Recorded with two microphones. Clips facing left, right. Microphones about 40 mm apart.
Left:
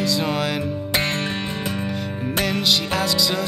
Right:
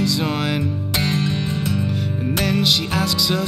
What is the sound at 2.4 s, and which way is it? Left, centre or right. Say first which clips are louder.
Music: right 1 dB; centre.